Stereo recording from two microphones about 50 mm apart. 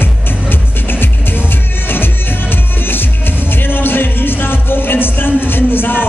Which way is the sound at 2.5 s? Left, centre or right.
Left.